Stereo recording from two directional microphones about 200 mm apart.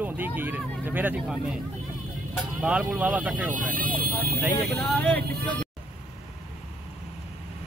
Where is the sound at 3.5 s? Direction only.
45° right (ahead or behind).